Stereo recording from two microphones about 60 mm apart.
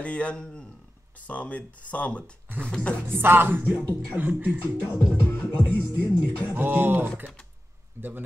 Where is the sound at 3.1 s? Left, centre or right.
Right.